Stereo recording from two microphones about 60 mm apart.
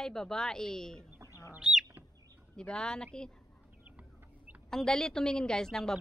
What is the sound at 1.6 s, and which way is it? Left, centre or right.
Chicken, centre.